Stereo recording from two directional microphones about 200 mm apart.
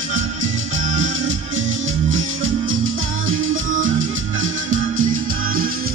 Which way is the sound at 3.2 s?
40° right (ahead or behind).